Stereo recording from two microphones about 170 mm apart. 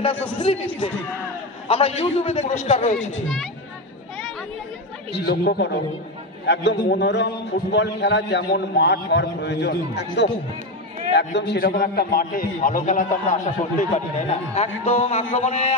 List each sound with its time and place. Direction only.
0.1 s speech: 10° left (ahead or behind)
0.4 s a man's voice: 35° left (ahead or behind)
1.7 s a man's voice: 35° left (ahead or behind)
5.1 s speech: 70° left (ahead or behind)
6.4 s a man's voice: 90° left; by 15.7 s 40° left (ahead or behind)